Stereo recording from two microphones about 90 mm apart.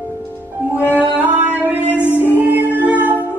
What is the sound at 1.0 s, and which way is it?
Music, 15° right (ahead or behind).